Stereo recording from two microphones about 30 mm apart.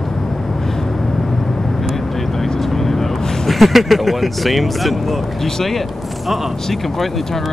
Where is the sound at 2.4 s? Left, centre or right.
Centre.